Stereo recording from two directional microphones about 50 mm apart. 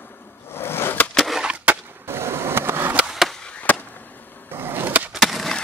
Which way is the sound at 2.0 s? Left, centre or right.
Right.